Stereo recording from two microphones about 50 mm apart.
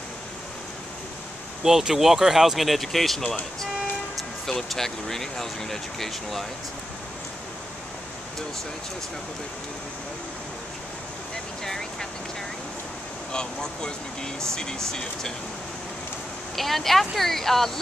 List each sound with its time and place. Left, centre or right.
1.6 s speech: centre
4.5 s speech: centre
11.6 s vehicle: centre
13.3 s speech: centre
16.5 s speech: centre